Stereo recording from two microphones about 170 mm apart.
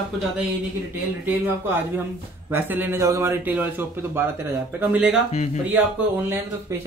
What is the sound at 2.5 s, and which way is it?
Speech, 10° right (ahead or behind).